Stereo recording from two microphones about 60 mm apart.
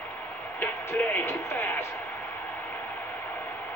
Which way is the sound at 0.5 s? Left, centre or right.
Left.